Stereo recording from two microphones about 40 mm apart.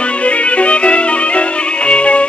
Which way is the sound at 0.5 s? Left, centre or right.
Left.